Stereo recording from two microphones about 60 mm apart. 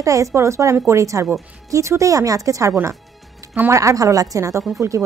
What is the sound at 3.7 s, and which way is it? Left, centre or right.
A woman's voice, right.